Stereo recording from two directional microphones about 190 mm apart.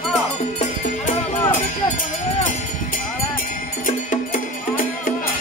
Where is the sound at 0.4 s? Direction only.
40° left (ahead or behind).